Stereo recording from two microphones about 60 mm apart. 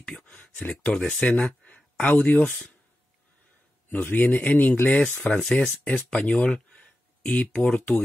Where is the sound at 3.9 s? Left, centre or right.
Left; by 5.7 s centre.